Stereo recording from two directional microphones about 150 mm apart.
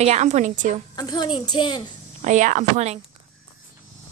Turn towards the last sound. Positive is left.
turn(degrees=-50)  # may be behind; listen again after turning